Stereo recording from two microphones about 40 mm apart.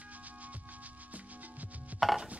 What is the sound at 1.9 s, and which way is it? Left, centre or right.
Chopping, right.